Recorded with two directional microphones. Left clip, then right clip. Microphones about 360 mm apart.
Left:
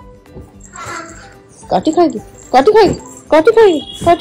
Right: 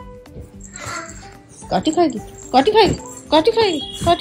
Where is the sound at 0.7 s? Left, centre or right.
Centre.